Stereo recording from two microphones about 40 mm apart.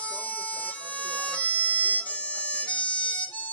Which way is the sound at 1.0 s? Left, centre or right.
Left.